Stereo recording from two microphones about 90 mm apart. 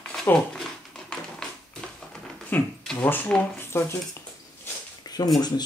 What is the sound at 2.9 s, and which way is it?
Speech, 20° left (ahead or behind).